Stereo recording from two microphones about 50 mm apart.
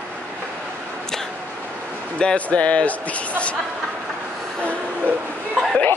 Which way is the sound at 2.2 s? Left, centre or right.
Left.